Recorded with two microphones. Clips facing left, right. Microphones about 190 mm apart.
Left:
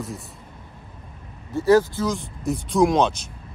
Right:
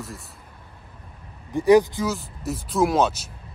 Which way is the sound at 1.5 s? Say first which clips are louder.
Right 1 dB; 15° right (ahead or behind).